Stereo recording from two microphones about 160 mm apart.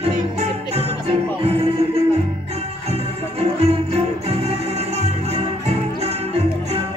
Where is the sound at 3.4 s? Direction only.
40° right (ahead or behind).